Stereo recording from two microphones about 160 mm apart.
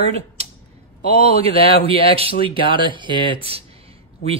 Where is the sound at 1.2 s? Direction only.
40° right (ahead or behind).